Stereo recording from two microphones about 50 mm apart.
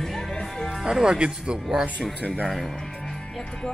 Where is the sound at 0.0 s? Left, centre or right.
Centre.